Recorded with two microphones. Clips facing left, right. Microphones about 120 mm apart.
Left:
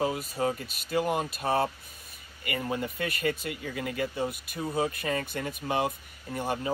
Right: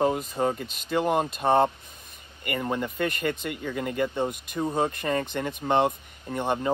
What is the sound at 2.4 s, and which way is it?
Speech, 50° right (ahead or behind).